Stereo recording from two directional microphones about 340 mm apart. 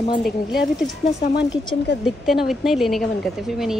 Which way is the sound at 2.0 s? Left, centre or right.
Centre.